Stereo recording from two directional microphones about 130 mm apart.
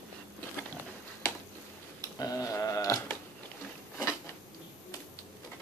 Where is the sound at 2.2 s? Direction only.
25° left (ahead or behind).